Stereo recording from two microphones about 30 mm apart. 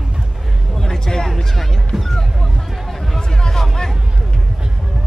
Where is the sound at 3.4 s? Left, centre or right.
Centre.